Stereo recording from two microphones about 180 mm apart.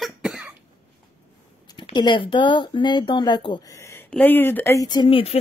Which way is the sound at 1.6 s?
25° left (ahead or behind).